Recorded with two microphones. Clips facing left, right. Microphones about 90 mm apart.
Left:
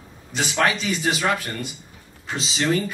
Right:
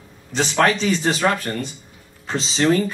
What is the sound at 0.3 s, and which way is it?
Speech, 35° right (ahead or behind).